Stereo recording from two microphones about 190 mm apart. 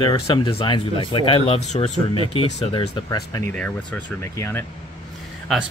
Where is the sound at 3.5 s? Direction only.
5° left (ahead or behind).